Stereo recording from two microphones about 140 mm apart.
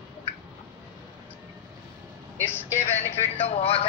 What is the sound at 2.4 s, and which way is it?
Speech, 15° left (ahead or behind).